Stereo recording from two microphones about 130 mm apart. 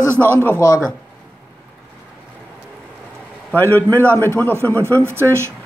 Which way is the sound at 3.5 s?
15° left (ahead or behind).